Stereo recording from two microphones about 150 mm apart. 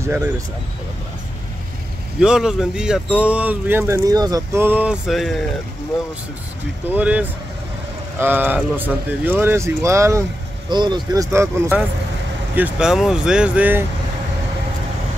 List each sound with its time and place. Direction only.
0.0 s speech: 20° right (ahead or behind)
2.1 s speech: 5° right (ahead or behind); by 4.6 s 25° right (ahead or behind)
4.6 s a sound: 10° right (ahead or behind)
6.9 s speech: 10° right (ahead or behind)
10.7 s speech: 30° right (ahead or behind)
11.3 s speech: 15° right (ahead or behind)